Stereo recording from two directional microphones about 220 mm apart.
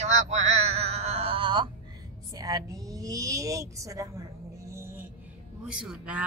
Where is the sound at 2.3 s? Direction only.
15° right (ahead or behind).